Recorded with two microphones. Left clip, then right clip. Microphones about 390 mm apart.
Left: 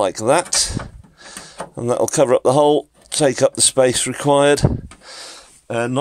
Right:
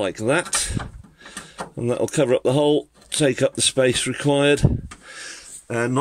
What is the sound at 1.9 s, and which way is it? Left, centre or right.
Speech, centre.